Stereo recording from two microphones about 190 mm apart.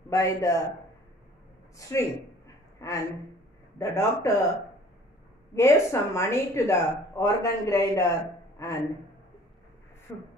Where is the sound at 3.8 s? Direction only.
15° left (ahead or behind).